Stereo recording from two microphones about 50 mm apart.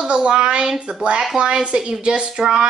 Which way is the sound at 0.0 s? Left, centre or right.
Centre.